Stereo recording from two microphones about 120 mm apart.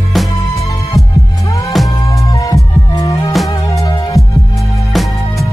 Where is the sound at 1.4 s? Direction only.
25° left (ahead or behind).